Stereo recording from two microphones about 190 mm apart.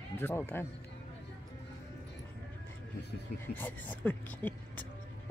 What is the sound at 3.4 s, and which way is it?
Speech, 10° left (ahead or behind).